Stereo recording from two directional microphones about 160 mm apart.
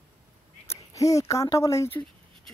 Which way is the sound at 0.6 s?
20° left (ahead or behind).